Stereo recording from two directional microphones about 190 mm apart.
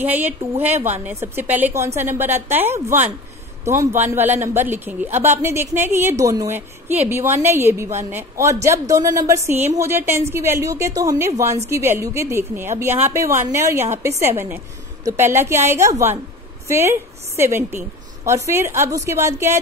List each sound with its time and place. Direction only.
0.0 s a woman's voice: 10° right (ahead or behind)
4.1 s a woman's voice: 10° right (ahead or behind)